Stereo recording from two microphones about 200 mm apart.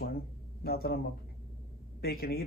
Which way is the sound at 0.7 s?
50° left (ahead or behind).